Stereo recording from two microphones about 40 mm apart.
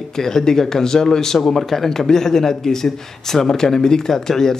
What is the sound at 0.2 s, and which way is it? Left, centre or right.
Speech, centre.